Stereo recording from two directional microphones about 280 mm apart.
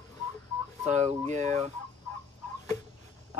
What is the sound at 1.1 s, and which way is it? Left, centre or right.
Speech, right.